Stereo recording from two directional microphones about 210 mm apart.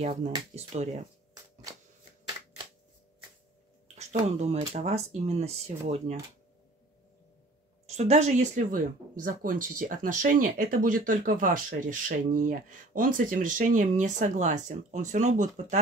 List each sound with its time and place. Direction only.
0.0 s speech: 35° right (ahead or behind)
1.3 s shuffling cards: 15° right (ahead or behind)
3.8 s a sound: 30° right (ahead or behind)
4.4 s speech: 30° right (ahead or behind)
7.8 s speech: 30° right (ahead or behind)